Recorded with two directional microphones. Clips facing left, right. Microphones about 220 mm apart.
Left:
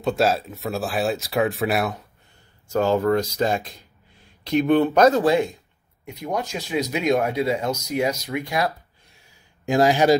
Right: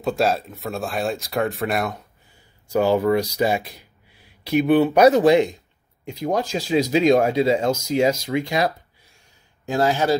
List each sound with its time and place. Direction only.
0.0 s speech: centre (ahead or behind)
2.7 s speech: 15° right (ahead or behind)
9.7 s speech: 15° left (ahead or behind)